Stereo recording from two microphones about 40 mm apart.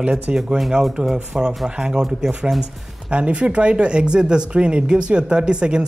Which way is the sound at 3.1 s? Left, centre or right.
Right.